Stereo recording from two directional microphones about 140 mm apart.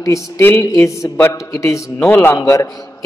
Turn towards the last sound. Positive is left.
turn(degrees=25)  # may be behind; listen again after turning